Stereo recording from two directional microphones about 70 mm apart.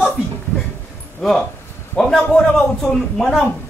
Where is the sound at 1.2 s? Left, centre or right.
Centre.